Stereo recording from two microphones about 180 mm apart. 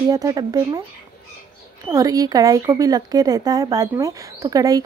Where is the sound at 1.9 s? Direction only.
20° right (ahead or behind).